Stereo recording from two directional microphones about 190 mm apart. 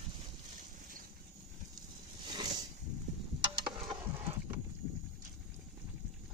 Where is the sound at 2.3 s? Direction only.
25° right (ahead or behind).